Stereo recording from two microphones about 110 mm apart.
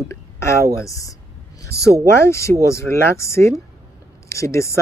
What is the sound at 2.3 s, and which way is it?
Speech, 25° left (ahead or behind).